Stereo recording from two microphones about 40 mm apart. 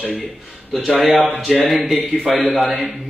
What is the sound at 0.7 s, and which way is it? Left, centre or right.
Speech, centre.